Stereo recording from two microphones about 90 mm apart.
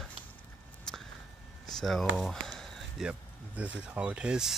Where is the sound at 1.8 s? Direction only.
Centre (ahead or behind).